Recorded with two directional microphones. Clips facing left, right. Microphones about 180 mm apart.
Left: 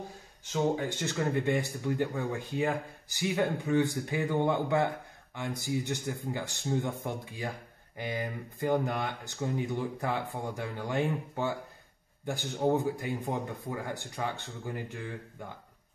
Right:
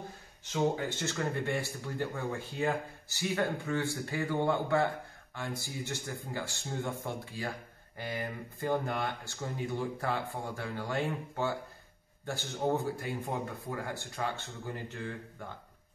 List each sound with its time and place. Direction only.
0.5 s speech: 15° left (ahead or behind)